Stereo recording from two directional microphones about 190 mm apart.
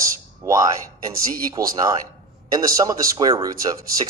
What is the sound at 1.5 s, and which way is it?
Speech, 20° right (ahead or behind).